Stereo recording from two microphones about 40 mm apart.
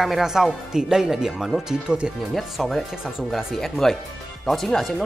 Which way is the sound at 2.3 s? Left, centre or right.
Centre.